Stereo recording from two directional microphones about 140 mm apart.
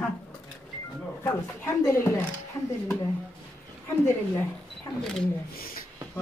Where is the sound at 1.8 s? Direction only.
20° left (ahead or behind).